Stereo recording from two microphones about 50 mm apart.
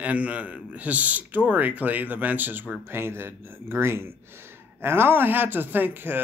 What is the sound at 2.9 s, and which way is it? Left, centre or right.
Speech, right.